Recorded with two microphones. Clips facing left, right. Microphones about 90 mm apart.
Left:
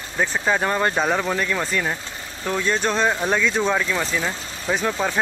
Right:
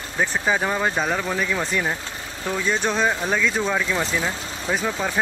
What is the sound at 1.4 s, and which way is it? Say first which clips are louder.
Speech: even; 5° right (ahead or behind).